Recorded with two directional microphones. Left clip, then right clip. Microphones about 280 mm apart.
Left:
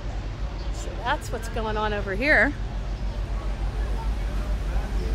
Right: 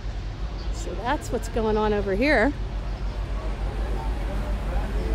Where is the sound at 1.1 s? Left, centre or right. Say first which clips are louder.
Even; right.